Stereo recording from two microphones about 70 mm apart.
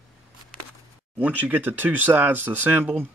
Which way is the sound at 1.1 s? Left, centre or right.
Right.